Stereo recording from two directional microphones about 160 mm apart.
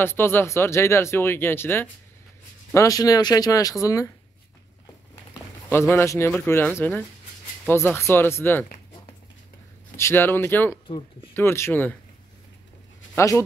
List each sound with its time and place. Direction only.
0.0 s speech: 15° left (ahead or behind)
5.7 s speech: 15° left (ahead or behind)
9.9 s speech: 15° left (ahead or behind)
13.1 s speech: 20° left (ahead or behind)